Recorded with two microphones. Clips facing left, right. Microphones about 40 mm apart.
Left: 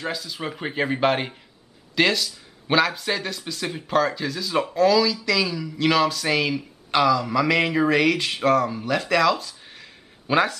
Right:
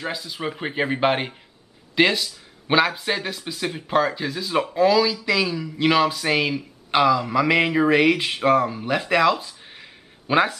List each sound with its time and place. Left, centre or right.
0.0 s speech: centre